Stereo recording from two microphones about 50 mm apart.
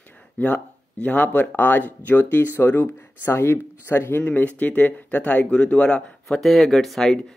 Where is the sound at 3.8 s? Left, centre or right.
Left.